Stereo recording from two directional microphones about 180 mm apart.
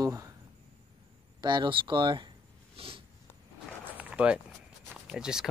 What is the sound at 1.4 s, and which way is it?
Speech, 25° right (ahead or behind).